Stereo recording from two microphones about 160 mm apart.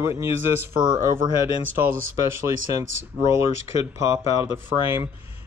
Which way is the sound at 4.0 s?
20° right (ahead or behind).